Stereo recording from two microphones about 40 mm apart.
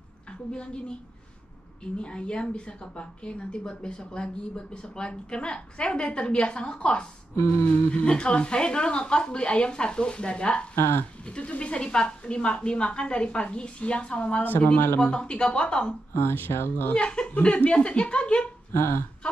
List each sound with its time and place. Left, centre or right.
0.5 s speech: left
2.0 s speech: left
10.8 s speech: left
11.2 s speech: left
14.4 s speech: left
15.0 s speech: left
16.1 s speech: left
16.9 s speech: left
18.7 s speech: left